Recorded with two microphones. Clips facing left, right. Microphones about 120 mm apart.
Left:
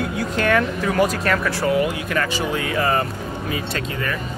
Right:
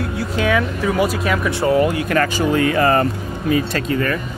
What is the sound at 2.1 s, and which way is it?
Speech, 50° right (ahead or behind).